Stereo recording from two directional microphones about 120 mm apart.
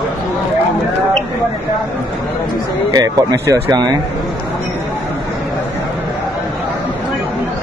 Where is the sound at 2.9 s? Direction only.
30° right (ahead or behind).